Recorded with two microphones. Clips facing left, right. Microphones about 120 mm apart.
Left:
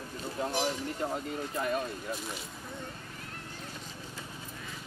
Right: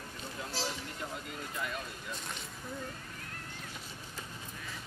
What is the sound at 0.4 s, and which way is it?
Speech, 35° left (ahead or behind).